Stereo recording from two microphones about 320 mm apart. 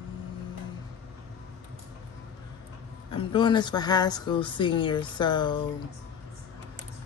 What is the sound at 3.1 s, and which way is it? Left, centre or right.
A woman's voice, centre.